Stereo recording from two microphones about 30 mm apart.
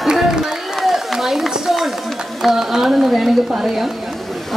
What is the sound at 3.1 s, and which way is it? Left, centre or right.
Speech, centre.